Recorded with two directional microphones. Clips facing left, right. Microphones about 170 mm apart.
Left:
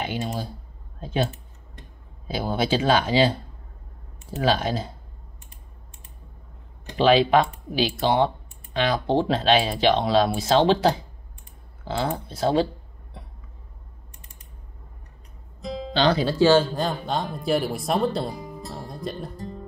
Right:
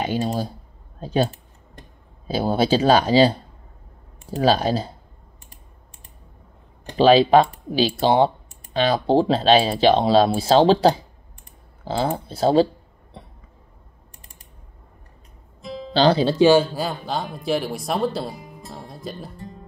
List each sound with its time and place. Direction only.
0.0 s speech: 35° right (ahead or behind)
6.9 s speech: 35° right (ahead or behind)
15.9 s speech: 30° right (ahead or behind)
16.4 s speech: 10° right (ahead or behind)
18.7 s music: centre (ahead or behind)